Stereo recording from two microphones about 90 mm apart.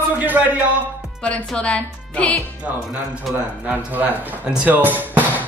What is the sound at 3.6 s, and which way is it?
A man's voice, 20° right (ahead or behind).